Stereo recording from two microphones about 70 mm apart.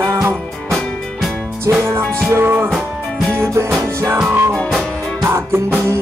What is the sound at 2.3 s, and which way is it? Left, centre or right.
Music, right.